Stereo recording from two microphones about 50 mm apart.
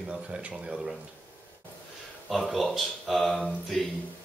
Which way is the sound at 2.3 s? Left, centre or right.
Centre.